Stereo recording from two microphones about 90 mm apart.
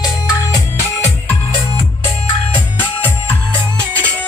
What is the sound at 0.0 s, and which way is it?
Music, 45° left (ahead or behind).